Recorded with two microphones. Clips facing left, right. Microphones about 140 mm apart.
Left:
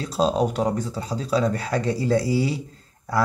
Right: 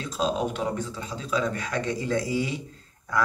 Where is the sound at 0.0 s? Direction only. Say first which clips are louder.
Left 5 dB; 35° left (ahead or behind).